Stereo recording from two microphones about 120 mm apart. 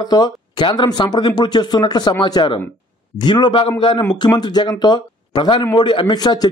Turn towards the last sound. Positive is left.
turn(degrees=35)  # may be behind; listen again after turning